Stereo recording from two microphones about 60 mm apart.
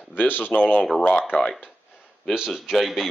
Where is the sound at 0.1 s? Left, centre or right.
Left.